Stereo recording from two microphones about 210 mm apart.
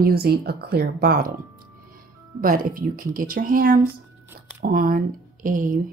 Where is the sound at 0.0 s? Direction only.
45° right (ahead or behind).